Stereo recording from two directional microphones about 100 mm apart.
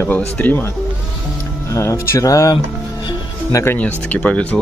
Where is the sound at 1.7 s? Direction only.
30° left (ahead or behind).